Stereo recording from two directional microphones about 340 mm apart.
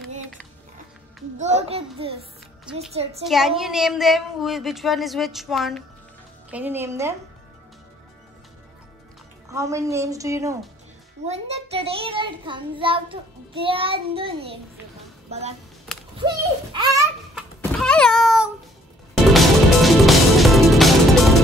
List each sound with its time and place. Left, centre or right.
1.4 s a child's voice: centre
2.9 s a child's voice: centre
3.3 s a woman's voice: centre
9.5 s a child's voice: centre
16.7 s a sound: centre
17.6 s thunk: centre
19.3 s music: centre